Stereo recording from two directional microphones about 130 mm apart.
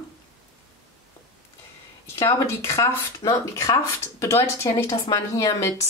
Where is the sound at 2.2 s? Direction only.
20° left (ahead or behind).